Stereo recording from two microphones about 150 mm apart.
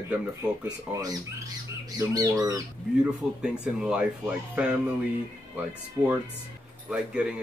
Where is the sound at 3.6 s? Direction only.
5° right (ahead or behind).